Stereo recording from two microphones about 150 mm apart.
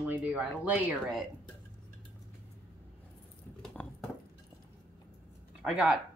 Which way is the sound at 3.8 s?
10° left (ahead or behind).